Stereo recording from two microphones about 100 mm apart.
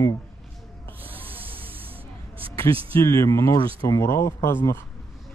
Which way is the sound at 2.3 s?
65° right (ahead or behind).